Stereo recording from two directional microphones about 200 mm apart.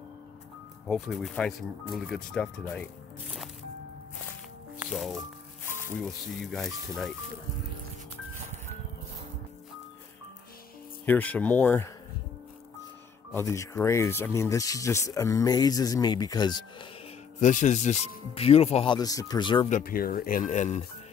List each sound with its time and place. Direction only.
0.8 s speech: centre (ahead or behind)
4.9 s speech: centre (ahead or behind)
6.4 s speech: centre (ahead or behind)
11.1 s speech: 10° left (ahead or behind)
13.3 s speech: 15° left (ahead or behind)
17.4 s speech: 40° left (ahead or behind)
19.7 s speech: 45° left (ahead or behind)